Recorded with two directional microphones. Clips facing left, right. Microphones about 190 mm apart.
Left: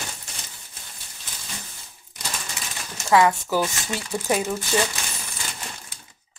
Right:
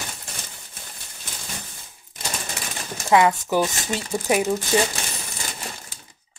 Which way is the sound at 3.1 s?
20° right (ahead or behind).